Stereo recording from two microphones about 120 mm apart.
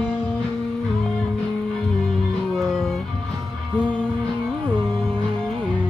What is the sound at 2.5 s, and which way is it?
Music, centre (ahead or behind).